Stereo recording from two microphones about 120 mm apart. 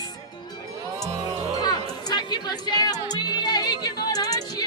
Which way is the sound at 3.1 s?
35° left (ahead or behind).